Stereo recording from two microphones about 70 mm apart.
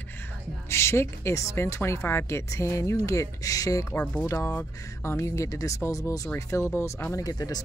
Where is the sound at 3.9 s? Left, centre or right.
Left.